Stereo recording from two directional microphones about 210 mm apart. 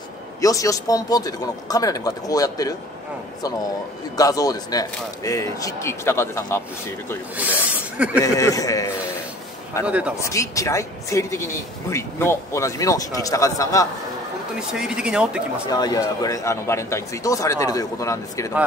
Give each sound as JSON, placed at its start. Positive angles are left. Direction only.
{"t": 0.4, "sound": "speech", "side_deg": 15}
{"t": 4.2, "sound": "speech", "side_deg": 15}
{"t": 8.2, "sound": "speech", "side_deg": 15}
{"t": 9.8, "sound": "speech", "side_deg": -5}
{"t": 10.2, "sound": "speech", "side_deg": 15}
{"t": 14.7, "sound": "speech", "side_deg": -5}
{"t": 15.7, "sound": "speech", "side_deg": 20}